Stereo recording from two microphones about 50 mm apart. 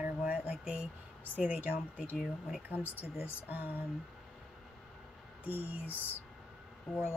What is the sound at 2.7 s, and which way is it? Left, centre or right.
Speech, right.